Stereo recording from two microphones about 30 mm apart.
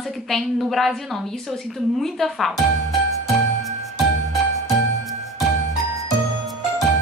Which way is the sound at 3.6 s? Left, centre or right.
Centre.